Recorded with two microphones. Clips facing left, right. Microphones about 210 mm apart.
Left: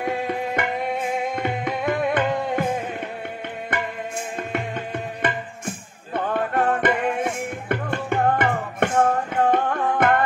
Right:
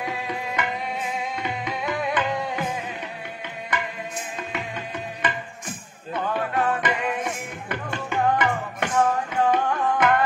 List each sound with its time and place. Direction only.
0.0 s music: 55° left (ahead or behind)
4.4 s tabla: 55° left (ahead or behind)
6.1 s music: 55° left (ahead or behind)